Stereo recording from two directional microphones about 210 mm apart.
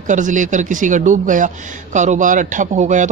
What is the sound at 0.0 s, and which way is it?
Speech, 35° right (ahead or behind).